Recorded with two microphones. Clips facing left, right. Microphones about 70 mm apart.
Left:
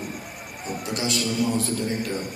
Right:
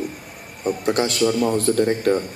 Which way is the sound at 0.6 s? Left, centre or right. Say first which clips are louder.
Right 8 dB; right.